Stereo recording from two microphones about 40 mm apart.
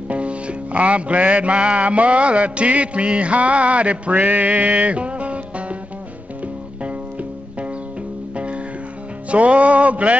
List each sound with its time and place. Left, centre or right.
0.1 s music: right
4.2 s music: right
9.3 s music: right